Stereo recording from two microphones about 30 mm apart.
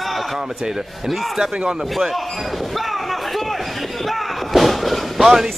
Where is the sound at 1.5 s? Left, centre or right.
Right.